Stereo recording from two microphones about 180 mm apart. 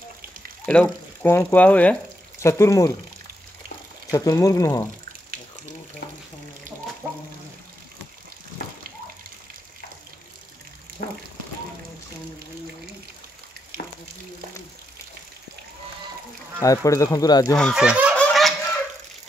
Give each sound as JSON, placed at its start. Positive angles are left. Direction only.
{"t": 0.7, "sound": "speech", "side_deg": 5}
{"t": 4.1, "sound": "speech", "side_deg": 20}
{"t": 7.0, "sound": "frying", "side_deg": -5}
{"t": 11.0, "sound": "a sound", "side_deg": 60}
{"t": 16.6, "sound": "speech", "side_deg": 20}
{"t": 17.6, "sound": "speech", "side_deg": 0}
{"t": 18.1, "sound": "a sound", "side_deg": 5}